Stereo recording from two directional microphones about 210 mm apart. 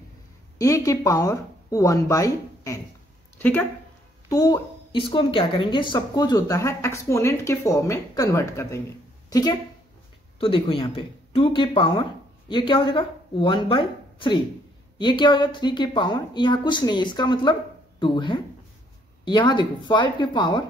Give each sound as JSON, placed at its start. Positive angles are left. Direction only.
{"t": 0.6, "sound": "a woman's voice", "side_deg": 15}